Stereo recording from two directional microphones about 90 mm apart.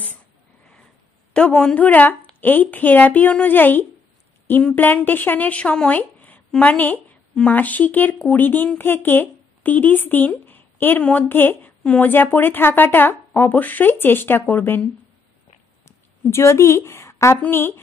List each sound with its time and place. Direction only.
1.3 s a woman's voice: 10° left (ahead or behind)
15.8 s a sound: 30° left (ahead or behind)
17.4 s speech: 25° left (ahead or behind)